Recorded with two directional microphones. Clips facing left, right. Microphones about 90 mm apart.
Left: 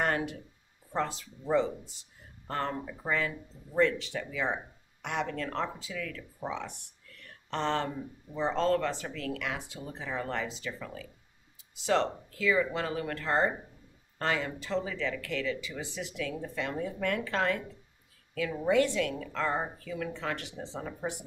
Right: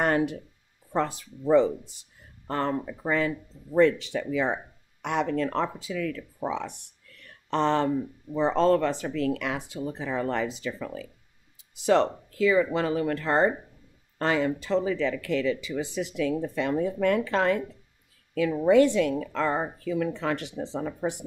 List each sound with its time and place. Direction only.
0.0 s a sound: 20° right (ahead or behind)
0.9 s speech: 15° right (ahead or behind)
7.5 s speech: 20° right (ahead or behind)
18.7 s speech: 20° right (ahead or behind)